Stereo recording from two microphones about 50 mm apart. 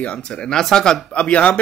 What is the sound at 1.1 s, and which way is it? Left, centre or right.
Speech, left.